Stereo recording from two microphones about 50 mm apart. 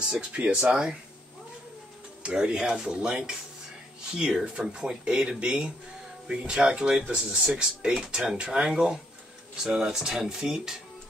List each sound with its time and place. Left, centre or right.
0.1 s speech: centre
2.2 s speech: centre